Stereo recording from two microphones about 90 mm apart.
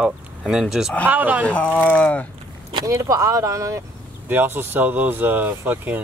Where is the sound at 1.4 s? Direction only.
15° left (ahead or behind).